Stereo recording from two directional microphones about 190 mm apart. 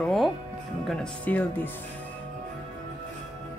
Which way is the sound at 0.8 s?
5° left (ahead or behind).